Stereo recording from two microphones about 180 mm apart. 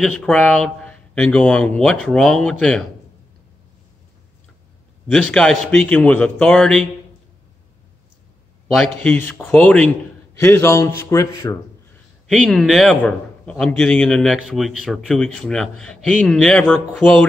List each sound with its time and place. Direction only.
0.0 s a man's voice: 5° left (ahead or behind)
5.0 s a man's voice: 5° left (ahead or behind)
9.0 s speech: 10° left (ahead or behind)
12.3 s a man's voice: centre (ahead or behind)